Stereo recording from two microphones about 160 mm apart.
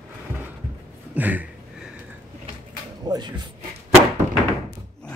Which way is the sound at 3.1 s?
25° right (ahead or behind).